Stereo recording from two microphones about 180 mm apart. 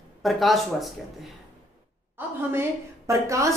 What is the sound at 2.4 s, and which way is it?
A woman's voice, 10° right (ahead or behind).